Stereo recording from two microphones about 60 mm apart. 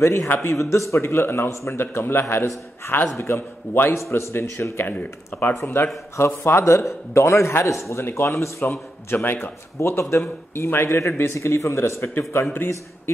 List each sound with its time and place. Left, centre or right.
0.0 s a man's voice: left
6.6 s a man's voice: left
7.9 s a man's voice: left
9.1 s a man's voice: left
9.8 s a man's voice: left